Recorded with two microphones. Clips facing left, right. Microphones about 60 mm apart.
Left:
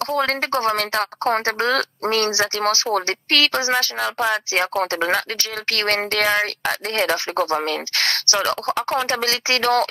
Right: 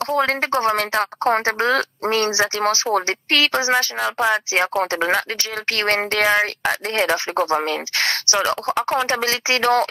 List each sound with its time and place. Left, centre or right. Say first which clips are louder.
0.0 s a woman's voice: right 2 dB; centre